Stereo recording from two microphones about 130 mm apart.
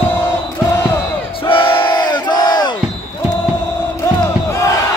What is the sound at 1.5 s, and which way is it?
Battle cry, 40° left (ahead or behind).